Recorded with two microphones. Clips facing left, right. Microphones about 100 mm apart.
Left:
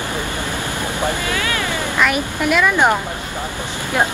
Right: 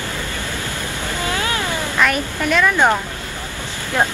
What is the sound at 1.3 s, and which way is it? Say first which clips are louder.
Vehicle: even; 25° right (ahead or behind).